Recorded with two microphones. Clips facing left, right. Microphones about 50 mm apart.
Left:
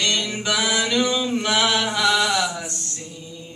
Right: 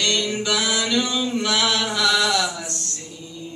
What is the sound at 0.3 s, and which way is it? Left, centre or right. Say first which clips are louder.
Mantra: even; left.